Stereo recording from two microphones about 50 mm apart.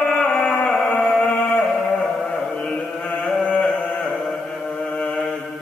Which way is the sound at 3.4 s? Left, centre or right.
Left.